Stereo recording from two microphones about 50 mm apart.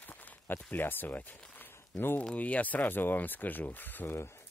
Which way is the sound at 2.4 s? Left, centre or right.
Left.